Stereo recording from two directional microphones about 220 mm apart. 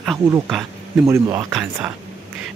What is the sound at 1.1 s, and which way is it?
Speech, 15° right (ahead or behind).